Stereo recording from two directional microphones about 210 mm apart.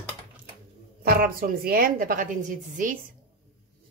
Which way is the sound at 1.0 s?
45° right (ahead or behind).